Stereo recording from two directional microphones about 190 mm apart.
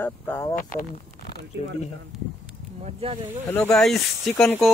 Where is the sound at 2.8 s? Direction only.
35° right (ahead or behind).